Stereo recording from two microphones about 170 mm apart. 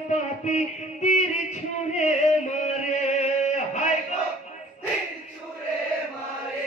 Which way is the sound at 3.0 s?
45° left (ahead or behind).